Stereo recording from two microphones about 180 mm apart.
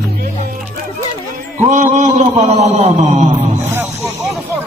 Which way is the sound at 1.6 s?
45° right (ahead or behind).